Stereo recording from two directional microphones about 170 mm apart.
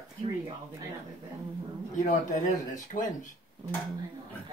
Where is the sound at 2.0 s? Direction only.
45° left (ahead or behind).